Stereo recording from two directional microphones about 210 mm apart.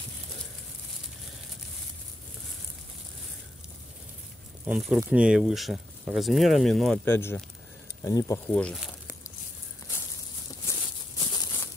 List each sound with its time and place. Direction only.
4.6 s speech: 5° right (ahead or behind); by 8.4 s 15° left (ahead or behind)
8.5 s speech: 5° left (ahead or behind)
10.7 s a sound: 15° left (ahead or behind)
11.1 s crumpling: 20° left (ahead or behind)